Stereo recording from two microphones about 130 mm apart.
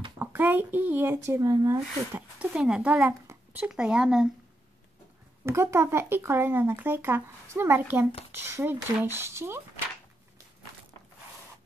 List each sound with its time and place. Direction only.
0.2 s speech: 15° right (ahead or behind)
2.3 s speech: 5° right (ahead or behind)
5.4 s speech: 20° right (ahead or behind)